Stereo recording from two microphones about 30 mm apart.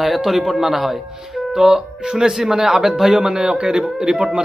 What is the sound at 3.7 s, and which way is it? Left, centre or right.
Speech, right.